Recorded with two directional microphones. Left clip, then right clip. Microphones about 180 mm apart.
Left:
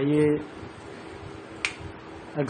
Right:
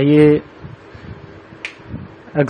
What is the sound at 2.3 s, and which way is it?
Speech, 45° right (ahead or behind).